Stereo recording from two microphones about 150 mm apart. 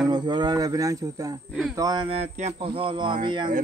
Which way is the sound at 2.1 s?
45° right (ahead or behind).